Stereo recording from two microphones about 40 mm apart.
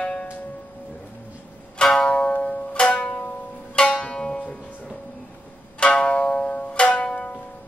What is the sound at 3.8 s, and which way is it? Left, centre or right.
Music, left.